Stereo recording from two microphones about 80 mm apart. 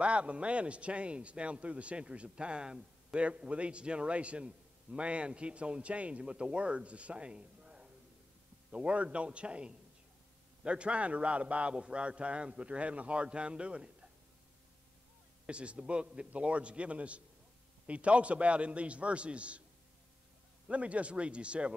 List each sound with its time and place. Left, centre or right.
0.0 s a man's voice: centre
15.4 s a man's voice: centre
20.6 s a man's voice: centre